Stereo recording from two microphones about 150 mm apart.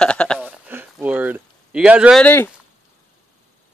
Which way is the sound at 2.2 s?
15° left (ahead or behind).